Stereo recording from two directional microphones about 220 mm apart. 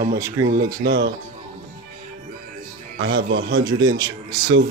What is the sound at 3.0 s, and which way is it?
Speech, 55° right (ahead or behind).